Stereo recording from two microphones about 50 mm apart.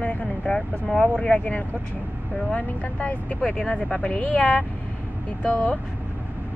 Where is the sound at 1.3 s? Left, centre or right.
Left.